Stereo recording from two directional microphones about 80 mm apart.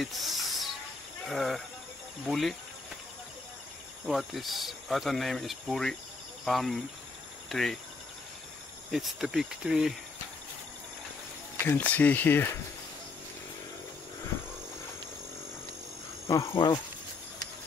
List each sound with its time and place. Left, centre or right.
0.0 s snake: centre
1.3 s speech: centre
4.1 s speech: centre
7.4 s cricket: centre
8.9 s speech: centre
11.5 s speech: left
16.5 s speech: left